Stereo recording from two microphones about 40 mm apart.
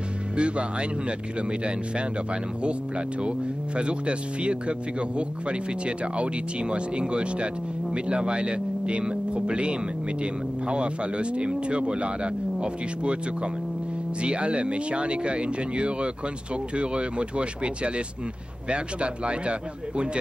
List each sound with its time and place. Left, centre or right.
0.4 s speech: right
3.2 s speech: right